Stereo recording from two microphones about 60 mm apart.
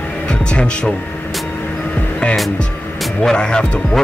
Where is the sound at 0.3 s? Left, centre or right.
Centre.